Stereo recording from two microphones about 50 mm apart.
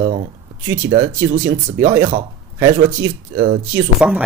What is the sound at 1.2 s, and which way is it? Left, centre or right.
Speech, right.